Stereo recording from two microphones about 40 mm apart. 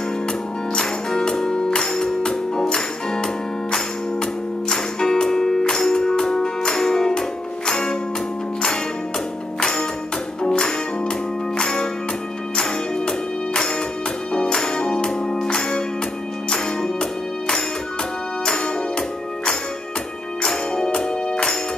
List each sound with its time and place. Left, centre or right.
0.7 s music: centre
9.6 s music: centre